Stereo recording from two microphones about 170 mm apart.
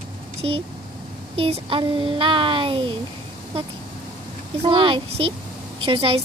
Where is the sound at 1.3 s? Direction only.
30° right (ahead or behind).